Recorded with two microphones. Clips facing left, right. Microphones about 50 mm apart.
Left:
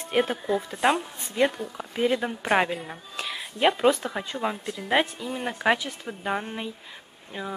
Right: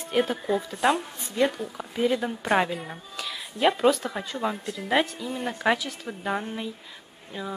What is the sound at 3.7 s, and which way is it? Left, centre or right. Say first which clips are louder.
Speech: even; centre.